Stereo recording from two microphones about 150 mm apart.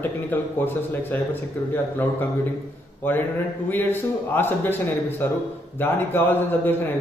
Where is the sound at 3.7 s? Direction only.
15° left (ahead or behind).